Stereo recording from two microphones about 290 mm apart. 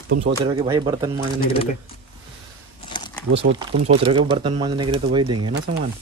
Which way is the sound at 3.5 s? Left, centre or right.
Right.